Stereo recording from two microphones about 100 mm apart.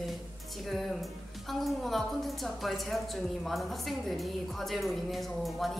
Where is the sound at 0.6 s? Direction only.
Centre (ahead or behind).